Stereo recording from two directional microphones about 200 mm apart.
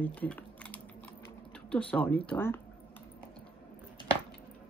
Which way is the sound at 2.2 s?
10° left (ahead or behind).